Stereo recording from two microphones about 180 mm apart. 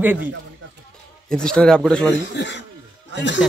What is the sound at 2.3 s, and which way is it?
Speech, 80° left.